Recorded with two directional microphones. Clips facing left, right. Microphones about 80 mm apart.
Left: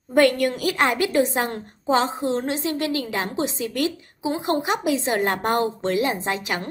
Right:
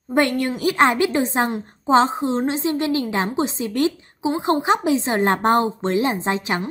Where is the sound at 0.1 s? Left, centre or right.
Right.